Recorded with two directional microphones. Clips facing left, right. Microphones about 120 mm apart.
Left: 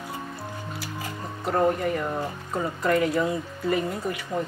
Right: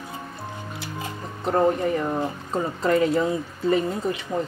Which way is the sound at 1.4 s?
25° right (ahead or behind).